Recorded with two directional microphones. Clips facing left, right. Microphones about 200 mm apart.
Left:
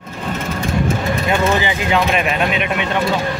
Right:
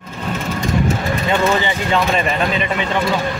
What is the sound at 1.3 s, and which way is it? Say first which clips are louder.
Speech: even; 10° left (ahead or behind).